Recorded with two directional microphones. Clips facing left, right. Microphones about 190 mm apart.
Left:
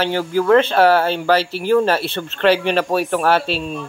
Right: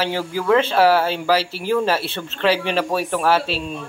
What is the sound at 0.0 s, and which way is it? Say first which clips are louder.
Speech: left 4 dB; 5° right (ahead or behind).